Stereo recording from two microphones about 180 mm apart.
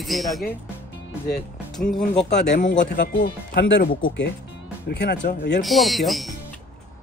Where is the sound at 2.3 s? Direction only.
70° left (ahead or behind).